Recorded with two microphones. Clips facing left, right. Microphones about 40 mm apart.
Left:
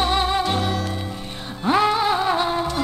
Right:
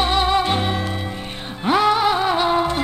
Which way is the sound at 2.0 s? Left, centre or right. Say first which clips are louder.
Right 2 dB; right.